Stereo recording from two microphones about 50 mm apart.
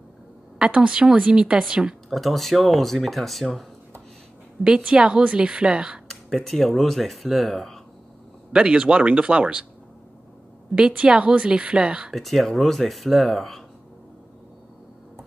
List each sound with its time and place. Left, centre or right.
0.7 s a woman's voice: centre
2.0 s speech: centre
4.6 s a woman's voice: centre
6.0 s speech: centre
8.5 s speech: centre
10.9 s a woman's voice: right
12.1 s speech: centre